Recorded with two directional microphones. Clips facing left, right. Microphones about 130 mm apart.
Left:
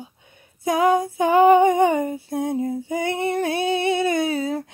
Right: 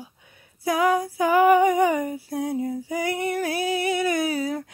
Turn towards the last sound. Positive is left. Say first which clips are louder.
# left 2 dB
turn(degrees=25)  # may be behind; listen again after turning